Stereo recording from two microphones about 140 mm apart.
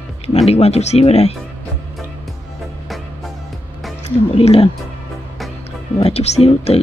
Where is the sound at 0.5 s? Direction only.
50° left (ahead or behind).